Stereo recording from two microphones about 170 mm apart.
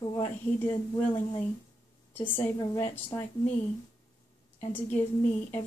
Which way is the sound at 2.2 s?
20° left (ahead or behind).